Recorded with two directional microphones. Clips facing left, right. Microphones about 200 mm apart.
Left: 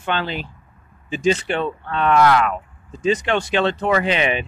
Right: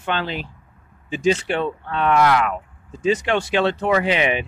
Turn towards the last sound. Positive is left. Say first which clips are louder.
# even
turn(degrees=-15)  # may be behind; listen again after turning